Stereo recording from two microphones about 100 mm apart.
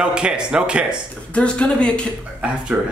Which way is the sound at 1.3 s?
10° left (ahead or behind).